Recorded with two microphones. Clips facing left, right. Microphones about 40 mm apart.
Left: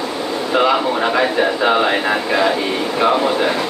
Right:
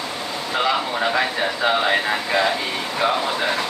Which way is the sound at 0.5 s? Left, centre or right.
Left.